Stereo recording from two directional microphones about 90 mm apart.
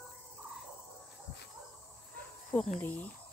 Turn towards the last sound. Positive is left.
turn(degrees=15)  # may be behind; listen again after turning